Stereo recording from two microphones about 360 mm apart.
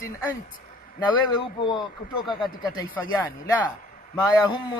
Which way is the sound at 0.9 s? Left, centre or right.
Centre.